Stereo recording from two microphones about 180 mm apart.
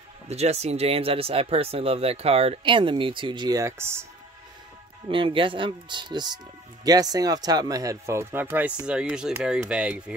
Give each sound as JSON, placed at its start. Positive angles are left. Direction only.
{"t": 0.3, "sound": "speech", "side_deg": -35}
{"t": 5.0, "sound": "speech", "side_deg": -30}